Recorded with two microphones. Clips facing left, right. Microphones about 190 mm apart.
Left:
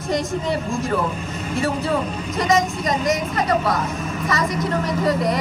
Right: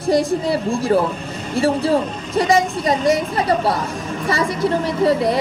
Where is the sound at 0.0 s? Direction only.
35° right (ahead or behind).